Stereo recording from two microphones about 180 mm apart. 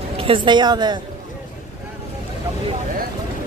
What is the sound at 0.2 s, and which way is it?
Speech, 30° right (ahead or behind).